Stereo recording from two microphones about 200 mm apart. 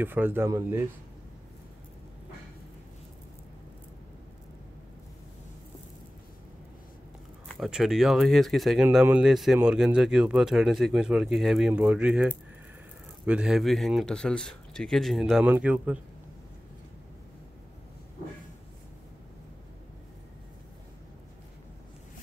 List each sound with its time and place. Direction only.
0.0 s speech: 10° right (ahead or behind)
7.4 s speech: centre (ahead or behind)